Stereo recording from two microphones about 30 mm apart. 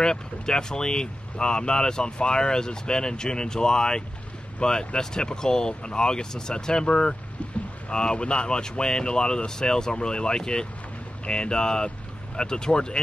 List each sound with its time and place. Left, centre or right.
0.0 s speech: left